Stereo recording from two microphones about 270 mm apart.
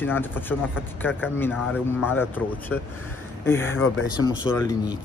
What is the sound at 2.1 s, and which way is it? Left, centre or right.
Speech, centre.